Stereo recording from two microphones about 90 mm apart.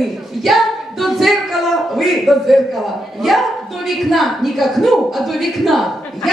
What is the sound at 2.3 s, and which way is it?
A woman's voice, centre (ahead or behind).